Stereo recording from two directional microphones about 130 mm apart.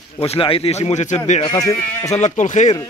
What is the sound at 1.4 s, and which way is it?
Speech, 30° left (ahead or behind).